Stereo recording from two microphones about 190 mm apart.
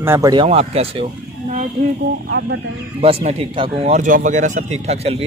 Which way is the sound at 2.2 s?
75° right (ahead or behind).